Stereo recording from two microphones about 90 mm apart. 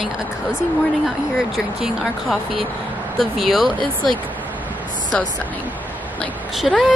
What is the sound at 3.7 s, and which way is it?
Speech, 65° right (ahead or behind).